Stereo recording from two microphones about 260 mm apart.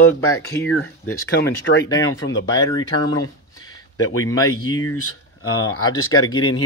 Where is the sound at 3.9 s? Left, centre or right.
Left.